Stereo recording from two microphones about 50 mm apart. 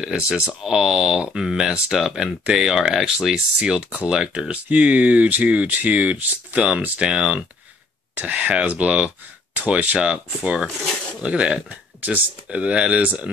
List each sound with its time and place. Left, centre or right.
0.0 s speech: right
4.5 s speech: right
8.2 s speech: right